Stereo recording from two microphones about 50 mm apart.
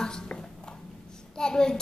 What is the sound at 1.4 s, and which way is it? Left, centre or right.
Child singing, centre.